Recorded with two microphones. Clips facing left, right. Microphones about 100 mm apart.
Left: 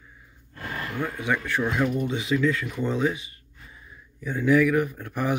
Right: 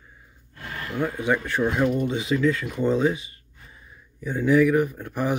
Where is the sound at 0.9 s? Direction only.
20° right (ahead or behind).